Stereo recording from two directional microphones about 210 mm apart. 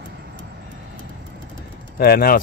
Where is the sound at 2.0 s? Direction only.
45° left (ahead or behind).